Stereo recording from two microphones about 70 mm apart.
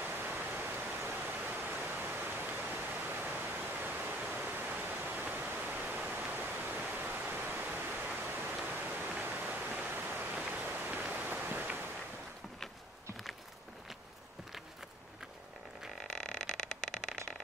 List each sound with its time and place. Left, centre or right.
0.4 s pink noise: right
9.1 s a sound: right
16.2 s vehicle: centre